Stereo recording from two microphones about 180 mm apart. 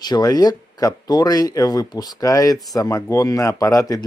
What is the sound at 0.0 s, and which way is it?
Speech, 20° left (ahead or behind).